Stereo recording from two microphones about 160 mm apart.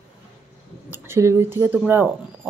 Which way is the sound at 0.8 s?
15° right (ahead or behind).